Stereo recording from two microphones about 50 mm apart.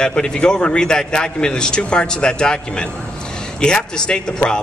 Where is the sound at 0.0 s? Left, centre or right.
Centre.